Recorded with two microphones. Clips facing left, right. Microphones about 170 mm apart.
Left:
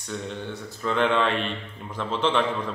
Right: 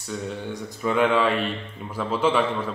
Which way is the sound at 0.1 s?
10° right (ahead or behind).